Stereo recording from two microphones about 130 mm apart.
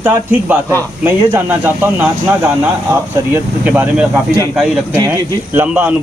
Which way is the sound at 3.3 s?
15° right (ahead or behind).